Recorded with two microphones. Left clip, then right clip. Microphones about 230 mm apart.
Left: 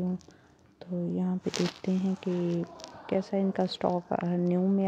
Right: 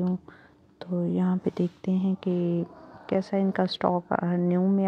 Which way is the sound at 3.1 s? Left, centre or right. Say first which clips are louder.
Right 3 dB; centre.